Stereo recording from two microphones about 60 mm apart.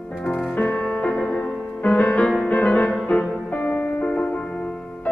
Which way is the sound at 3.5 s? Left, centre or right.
Left.